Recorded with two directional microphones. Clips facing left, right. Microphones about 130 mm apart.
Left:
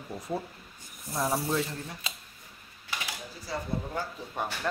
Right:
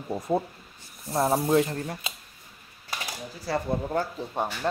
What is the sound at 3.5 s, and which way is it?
Speech, 65° right (ahead or behind).